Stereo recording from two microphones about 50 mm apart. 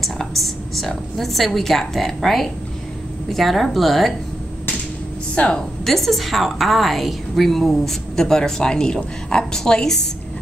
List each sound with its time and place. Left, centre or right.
0.0 s a woman's voice: centre
5.3 s a woman's voice: left
5.9 s a woman's voice: centre